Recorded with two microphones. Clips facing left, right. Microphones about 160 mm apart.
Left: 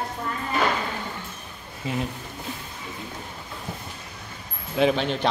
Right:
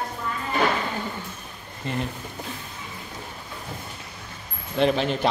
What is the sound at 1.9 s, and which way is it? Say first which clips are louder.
Speech: left 1 dB; 5° left (ahead or behind).